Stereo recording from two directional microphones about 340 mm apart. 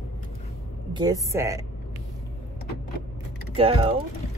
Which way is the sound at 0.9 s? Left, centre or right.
Centre.